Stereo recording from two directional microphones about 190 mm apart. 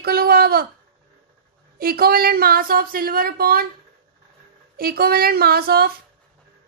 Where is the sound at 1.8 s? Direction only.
55° right (ahead or behind).